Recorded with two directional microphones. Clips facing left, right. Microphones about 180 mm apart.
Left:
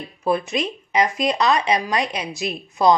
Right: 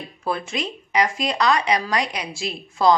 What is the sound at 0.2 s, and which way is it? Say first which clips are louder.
A woman's voice: left 5 dB; 20° left (ahead or behind).